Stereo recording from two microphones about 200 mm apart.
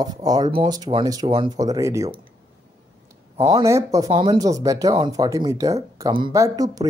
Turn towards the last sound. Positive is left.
turn(degrees=-15)  # may be behind; listen again after turning